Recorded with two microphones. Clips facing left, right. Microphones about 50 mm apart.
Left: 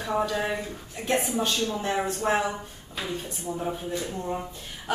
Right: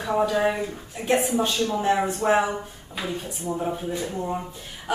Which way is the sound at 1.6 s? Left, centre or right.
Centre.